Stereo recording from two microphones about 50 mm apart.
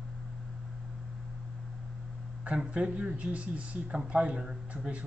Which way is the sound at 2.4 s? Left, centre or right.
Right.